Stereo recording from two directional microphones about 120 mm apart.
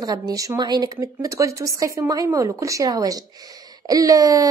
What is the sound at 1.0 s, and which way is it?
A woman's voice, 25° right (ahead or behind).